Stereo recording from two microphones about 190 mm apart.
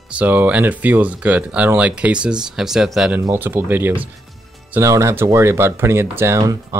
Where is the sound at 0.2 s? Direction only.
10° right (ahead or behind).